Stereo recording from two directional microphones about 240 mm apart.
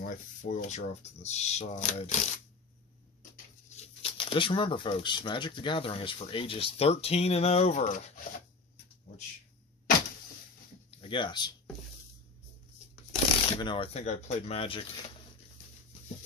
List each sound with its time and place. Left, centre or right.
0.0 s speech: left
3.7 s speech: left
10.9 s speech: left
13.1 s speech: left